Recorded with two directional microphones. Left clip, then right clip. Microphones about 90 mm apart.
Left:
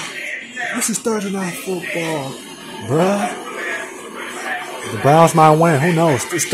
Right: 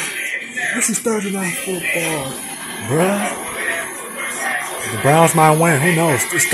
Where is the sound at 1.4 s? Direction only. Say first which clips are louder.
Right 2 dB; 30° left (ahead or behind).